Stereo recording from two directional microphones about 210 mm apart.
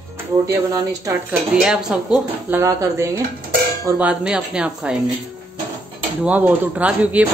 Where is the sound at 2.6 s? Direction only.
15° right (ahead or behind).